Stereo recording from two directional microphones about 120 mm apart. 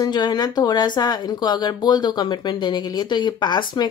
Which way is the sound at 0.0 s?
35° left (ahead or behind).